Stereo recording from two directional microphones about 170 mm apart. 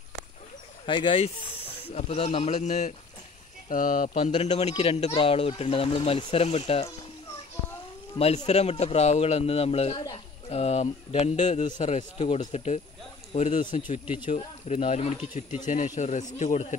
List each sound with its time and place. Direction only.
0.8 s speech: 30° left (ahead or behind); by 4.3 s 50° left (ahead or behind)
4.3 s speech: 40° left (ahead or behind)
8.2 s speech: 40° left (ahead or behind)